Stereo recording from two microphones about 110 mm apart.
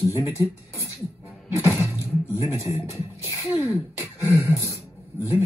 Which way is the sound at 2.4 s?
25° right (ahead or behind).